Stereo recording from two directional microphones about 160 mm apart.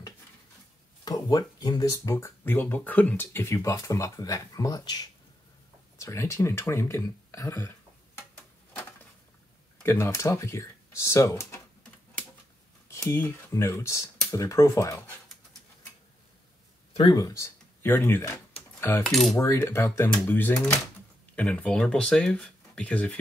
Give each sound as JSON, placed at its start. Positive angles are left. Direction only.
{"t": 1.0, "sound": "speech", "side_deg": 25}
{"t": 9.8, "sound": "speech", "side_deg": 15}
{"t": 12.8, "sound": "speech", "side_deg": 15}
{"t": 17.1, "sound": "speech", "side_deg": 20}
{"t": 18.8, "sound": "cutlery", "side_deg": 15}
{"t": 19.0, "sound": "cutlery", "side_deg": 0}
{"t": 19.3, "sound": "speech", "side_deg": 15}